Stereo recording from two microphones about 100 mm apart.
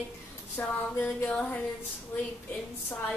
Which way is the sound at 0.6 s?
20° left (ahead or behind).